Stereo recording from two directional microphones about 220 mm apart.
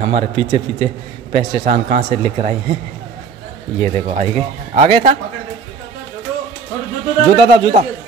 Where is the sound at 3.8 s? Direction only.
30° right (ahead or behind).